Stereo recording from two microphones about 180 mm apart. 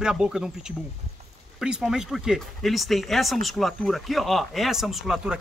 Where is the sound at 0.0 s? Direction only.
5° right (ahead or behind).